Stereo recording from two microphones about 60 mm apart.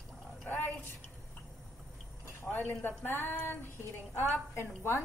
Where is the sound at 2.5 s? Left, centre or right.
Left.